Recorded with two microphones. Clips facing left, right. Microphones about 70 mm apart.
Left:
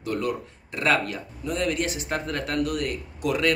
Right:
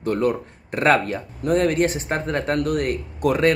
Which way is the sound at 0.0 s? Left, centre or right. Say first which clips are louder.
Right 6 dB; right.